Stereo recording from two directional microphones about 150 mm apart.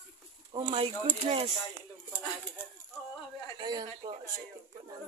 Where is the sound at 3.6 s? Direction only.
25° right (ahead or behind).